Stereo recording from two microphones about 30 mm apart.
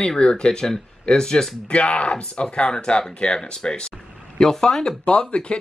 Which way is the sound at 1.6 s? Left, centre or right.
Left.